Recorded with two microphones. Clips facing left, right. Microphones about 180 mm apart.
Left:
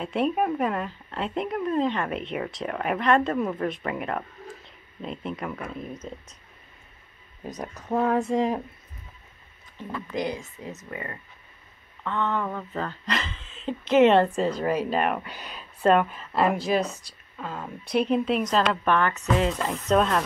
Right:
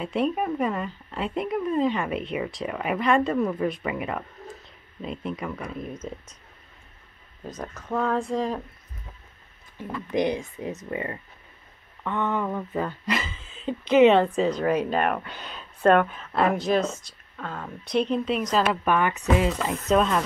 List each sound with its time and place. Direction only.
0.0 s speech: centre (ahead or behind)
7.4 s speech: 20° left (ahead or behind)
10.1 s speech: 20° right (ahead or behind)
12.0 s speech: 15° right (ahead or behind)